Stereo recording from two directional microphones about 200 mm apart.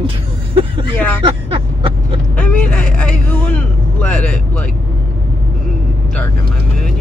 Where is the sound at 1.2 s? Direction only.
30° right (ahead or behind).